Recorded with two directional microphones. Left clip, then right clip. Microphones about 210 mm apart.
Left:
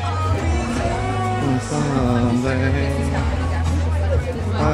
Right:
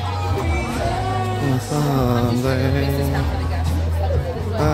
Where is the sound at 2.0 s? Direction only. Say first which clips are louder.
Even; 5° right (ahead or behind).